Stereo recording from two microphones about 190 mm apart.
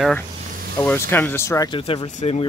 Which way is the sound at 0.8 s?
10° left (ahead or behind).